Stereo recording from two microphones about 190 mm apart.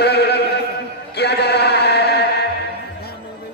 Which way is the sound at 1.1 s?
60° left (ahead or behind).